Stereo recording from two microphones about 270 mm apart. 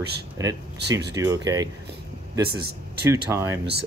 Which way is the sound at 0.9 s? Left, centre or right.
Right.